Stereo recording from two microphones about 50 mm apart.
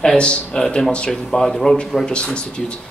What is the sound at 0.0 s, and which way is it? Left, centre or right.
Speech, centre.